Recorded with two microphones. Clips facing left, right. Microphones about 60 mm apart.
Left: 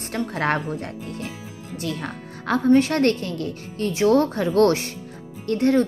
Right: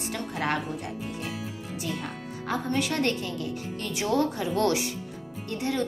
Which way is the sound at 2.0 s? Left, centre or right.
Left.